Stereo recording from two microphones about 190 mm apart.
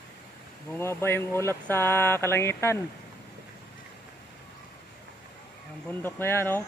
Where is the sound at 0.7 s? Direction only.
10° left (ahead or behind).